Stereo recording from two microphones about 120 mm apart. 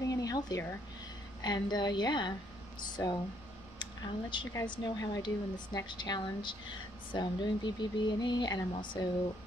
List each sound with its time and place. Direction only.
0.1 s a sound: 30° left (ahead or behind)
1.4 s speech: 35° left (ahead or behind)
3.0 s speech: 25° left (ahead or behind)
3.8 s speech: 40° left (ahead or behind)